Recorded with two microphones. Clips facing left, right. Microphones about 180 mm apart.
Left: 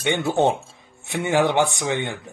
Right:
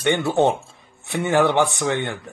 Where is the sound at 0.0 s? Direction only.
15° left (ahead or behind).